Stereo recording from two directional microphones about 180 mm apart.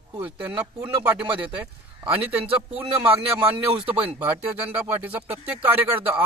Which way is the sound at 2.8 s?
10° right (ahead or behind).